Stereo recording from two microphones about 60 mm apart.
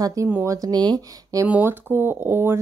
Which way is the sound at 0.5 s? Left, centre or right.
Right.